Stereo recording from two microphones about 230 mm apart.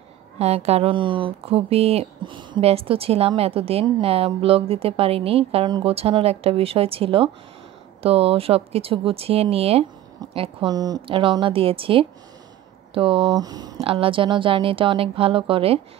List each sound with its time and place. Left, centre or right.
0.4 s speech: right